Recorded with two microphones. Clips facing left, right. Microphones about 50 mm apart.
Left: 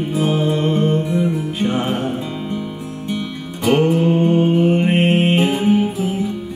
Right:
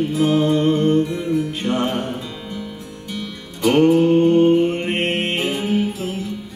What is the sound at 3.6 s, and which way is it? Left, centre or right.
Mantra, centre.